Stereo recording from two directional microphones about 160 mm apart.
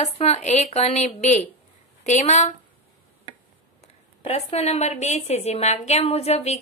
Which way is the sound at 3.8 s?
40° left (ahead or behind).